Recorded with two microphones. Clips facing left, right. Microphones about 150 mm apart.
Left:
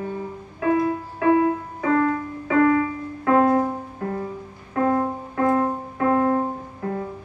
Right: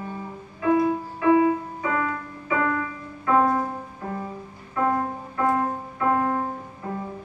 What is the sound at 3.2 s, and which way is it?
Music, 70° left (ahead or behind).